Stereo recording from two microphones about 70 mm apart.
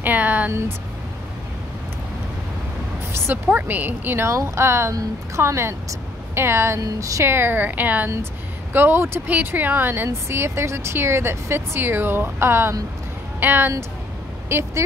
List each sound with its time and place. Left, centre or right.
0.0 s a sound: right
3.1 s a sound: right
3.4 s a woman's voice: right
4.3 s speech: right
6.8 s speech: right
7.2 s a woman's voice: right
14.5 s speech: right